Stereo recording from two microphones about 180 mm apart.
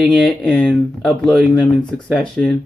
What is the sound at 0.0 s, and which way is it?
Speech, centre (ahead or behind).